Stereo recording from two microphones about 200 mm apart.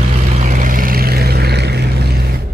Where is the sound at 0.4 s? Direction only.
40° right (ahead or behind).